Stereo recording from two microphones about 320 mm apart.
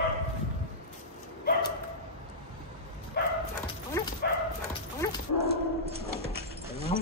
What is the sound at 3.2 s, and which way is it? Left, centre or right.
Bow-wow, left.